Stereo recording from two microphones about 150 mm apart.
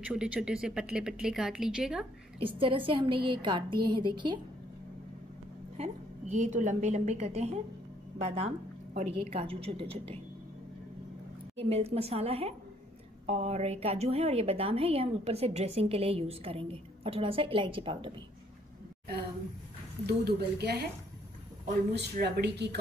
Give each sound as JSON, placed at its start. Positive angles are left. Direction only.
{"t": 0.1, "sound": "speech", "side_deg": -5}
{"t": 2.4, "sound": "a woman's voice", "side_deg": -35}
{"t": 5.8, "sound": "a woman's voice", "side_deg": -50}
{"t": 11.5, "sound": "a woman's voice", "side_deg": -40}
{"t": 20.2, "sound": "speech", "side_deg": -90}